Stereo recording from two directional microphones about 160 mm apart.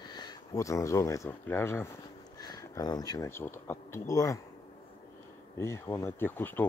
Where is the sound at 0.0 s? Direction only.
25° left (ahead or behind).